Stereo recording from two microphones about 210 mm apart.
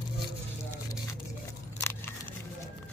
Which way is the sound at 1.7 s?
10° left (ahead or behind).